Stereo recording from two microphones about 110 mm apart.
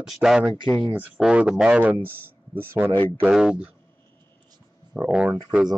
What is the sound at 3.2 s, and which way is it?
Speech, 5° right (ahead or behind).